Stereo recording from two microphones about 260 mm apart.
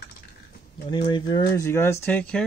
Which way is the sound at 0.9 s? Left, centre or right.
Centre.